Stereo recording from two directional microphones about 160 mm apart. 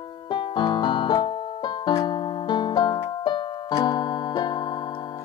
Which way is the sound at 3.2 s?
25° left (ahead or behind).